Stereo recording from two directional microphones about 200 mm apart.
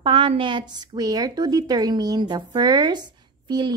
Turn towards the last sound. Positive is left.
turn(degrees=-20)  # may be behind; listen again after turning